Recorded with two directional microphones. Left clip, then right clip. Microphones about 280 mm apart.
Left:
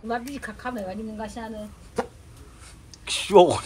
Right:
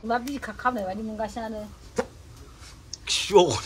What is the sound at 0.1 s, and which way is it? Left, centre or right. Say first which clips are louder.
Speech: right 3 dB; centre.